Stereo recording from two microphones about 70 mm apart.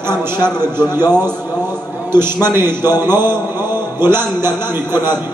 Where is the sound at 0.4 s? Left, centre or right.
Right.